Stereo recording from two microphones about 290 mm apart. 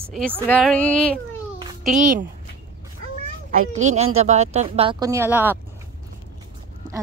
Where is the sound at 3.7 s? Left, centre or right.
Right; by 5.5 s centre.